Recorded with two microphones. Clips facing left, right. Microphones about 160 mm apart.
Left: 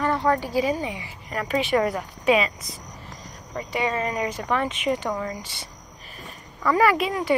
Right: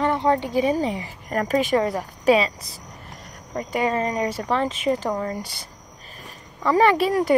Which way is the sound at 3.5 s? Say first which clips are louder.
Right 3 dB; 45° right (ahead or behind).